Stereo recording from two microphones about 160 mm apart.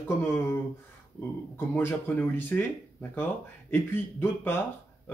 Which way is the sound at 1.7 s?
15° left (ahead or behind).